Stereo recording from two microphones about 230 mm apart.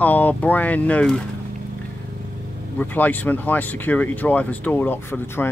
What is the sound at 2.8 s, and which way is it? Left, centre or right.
Speech, centre.